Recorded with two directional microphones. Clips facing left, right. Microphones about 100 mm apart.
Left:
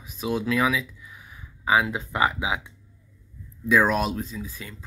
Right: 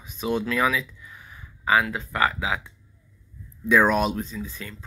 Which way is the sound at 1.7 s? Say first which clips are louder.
Even; 20° left (ahead or behind).